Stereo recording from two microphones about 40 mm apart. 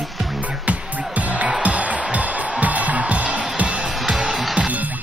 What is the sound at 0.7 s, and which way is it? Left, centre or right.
Music, right.